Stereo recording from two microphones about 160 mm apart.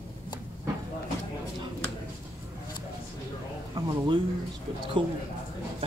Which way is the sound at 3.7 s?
30° right (ahead or behind).